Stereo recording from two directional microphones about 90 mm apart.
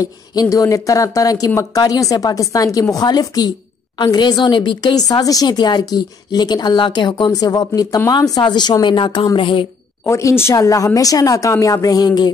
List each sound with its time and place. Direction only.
0.0 s a woman's voice: 40° left (ahead or behind); by 9.7 s 70° left (ahead or behind)
10.0 s a woman's voice: 35° left (ahead or behind)